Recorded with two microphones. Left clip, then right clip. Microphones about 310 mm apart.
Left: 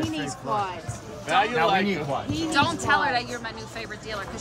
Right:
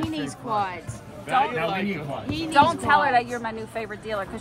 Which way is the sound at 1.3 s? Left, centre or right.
Left.